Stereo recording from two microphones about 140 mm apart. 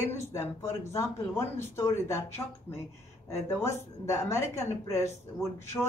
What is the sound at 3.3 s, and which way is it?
A man's voice, 20° left (ahead or behind).